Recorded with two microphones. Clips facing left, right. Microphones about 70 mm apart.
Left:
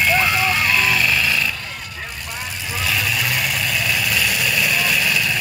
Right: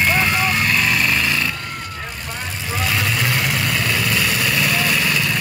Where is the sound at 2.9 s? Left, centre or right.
Right.